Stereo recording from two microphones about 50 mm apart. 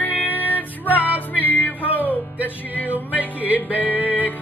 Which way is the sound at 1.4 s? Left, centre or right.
Left.